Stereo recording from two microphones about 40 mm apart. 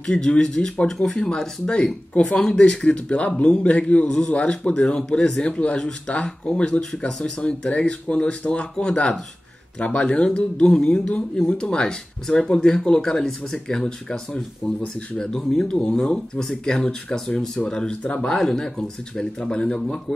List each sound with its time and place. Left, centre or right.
0.0 s a man's voice: centre
18.3 s speech: centre